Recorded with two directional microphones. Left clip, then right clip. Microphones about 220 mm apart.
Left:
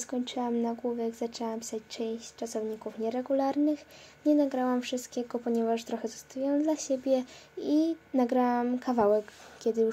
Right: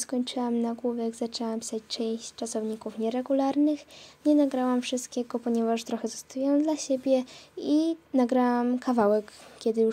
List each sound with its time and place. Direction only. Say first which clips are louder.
0.0 s speech: right 3 dB; 35° right (ahead or behind)